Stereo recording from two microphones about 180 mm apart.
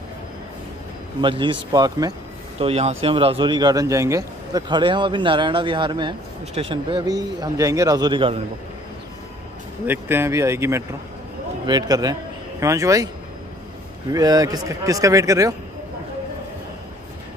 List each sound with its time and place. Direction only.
1.2 s speech: 25° right (ahead or behind)
2.6 s speech: 35° right (ahead or behind)
9.8 s a man's voice: 10° right (ahead or behind)
14.1 s speech: 20° right (ahead or behind)